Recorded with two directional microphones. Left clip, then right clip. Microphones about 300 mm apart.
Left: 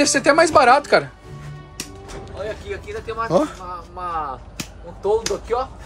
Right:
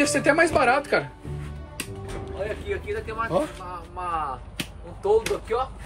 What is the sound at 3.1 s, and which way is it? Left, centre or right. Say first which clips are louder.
Speech: left 7 dB; left.